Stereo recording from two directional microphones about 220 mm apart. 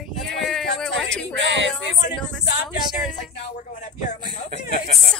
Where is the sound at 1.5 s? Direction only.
55° right (ahead or behind).